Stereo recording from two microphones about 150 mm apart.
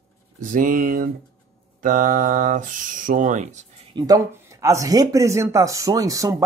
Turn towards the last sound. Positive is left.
turn(degrees=-20)  # may be behind; listen again after turning